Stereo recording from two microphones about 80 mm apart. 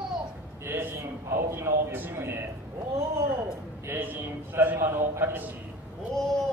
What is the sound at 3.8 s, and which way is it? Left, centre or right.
A man's voice, right.